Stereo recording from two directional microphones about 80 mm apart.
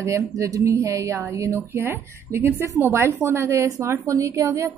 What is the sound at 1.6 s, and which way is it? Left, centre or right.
A woman's voice, right.